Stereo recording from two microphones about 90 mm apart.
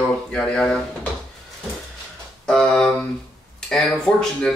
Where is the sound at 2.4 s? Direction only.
5° left (ahead or behind).